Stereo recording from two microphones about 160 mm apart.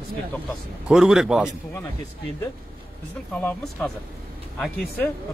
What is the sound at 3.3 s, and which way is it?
Speech, 10° left (ahead or behind).